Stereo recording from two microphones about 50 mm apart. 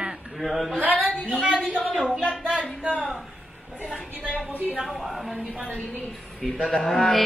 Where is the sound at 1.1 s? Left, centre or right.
Centre.